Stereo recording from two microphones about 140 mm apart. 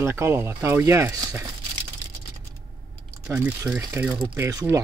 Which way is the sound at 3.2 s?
20° right (ahead or behind).